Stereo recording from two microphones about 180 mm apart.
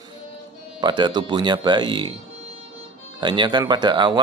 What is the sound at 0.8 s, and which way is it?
Speech, 25° right (ahead or behind).